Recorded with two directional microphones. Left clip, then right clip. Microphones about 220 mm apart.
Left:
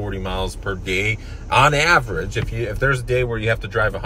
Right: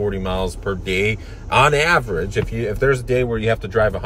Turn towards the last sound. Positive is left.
turn(degrees=-15)  # may be behind; listen again after turning